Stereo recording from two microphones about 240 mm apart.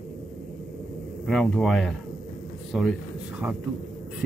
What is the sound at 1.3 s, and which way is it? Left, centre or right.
Speech, centre.